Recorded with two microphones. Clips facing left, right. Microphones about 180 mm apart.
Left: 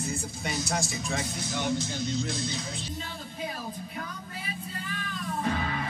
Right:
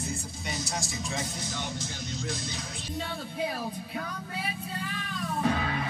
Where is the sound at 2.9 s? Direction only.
65° right (ahead or behind).